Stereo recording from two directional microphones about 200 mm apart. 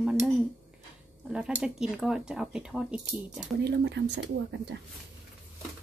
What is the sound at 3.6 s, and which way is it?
Speech, 60° right (ahead or behind).